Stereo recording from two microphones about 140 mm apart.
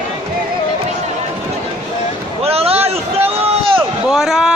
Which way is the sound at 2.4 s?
45° right (ahead or behind).